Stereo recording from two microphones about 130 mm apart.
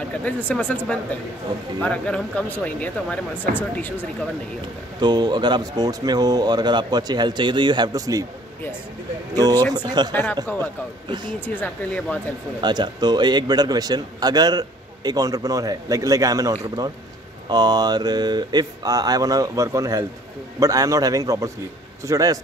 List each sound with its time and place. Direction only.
0.5 s speech: 10° left (ahead or behind)
5.0 s a man's voice: 35° right (ahead or behind)
9.3 s a man's voice: 30° right (ahead or behind)
10.1 s speech: 15° left (ahead or behind)
12.5 s a man's voice: 35° right (ahead or behind)